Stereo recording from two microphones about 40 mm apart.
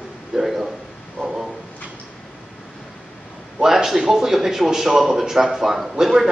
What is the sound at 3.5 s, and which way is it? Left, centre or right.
A man's voice, centre.